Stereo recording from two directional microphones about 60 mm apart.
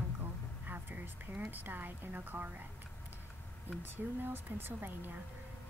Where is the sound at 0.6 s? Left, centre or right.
Right.